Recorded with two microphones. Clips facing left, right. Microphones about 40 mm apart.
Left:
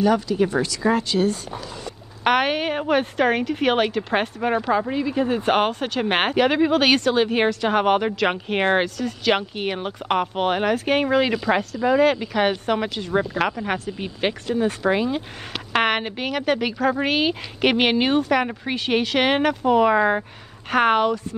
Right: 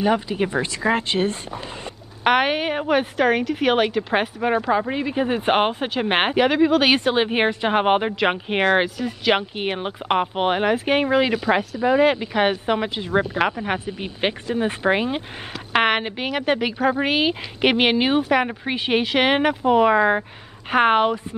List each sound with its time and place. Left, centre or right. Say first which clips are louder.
0.0 s speech: left 1 dB; right
2.2 s a woman's voice: right 1 dB; centre
4.9 s a woman's voice: even; right
6.5 s speech: right 1 dB; centre
7.0 s a woman's voice: even; right
15.7 s a woman's voice: right 2 dB; centre